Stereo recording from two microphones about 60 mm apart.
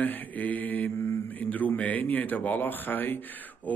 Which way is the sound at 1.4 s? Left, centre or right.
Left.